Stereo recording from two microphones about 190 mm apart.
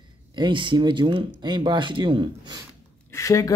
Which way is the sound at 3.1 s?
15° left (ahead or behind).